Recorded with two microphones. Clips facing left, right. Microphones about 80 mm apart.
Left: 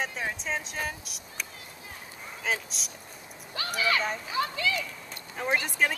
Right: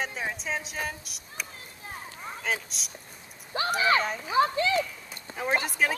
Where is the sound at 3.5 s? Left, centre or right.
Right.